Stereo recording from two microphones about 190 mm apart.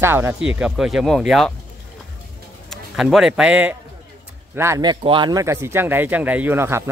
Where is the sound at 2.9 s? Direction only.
Centre (ahead or behind).